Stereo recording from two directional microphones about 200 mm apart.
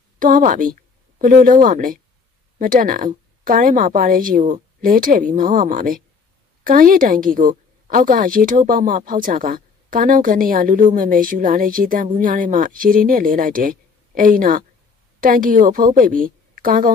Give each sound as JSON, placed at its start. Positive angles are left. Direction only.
{"t": 0.2, "sound": "a woman's voice", "side_deg": -40}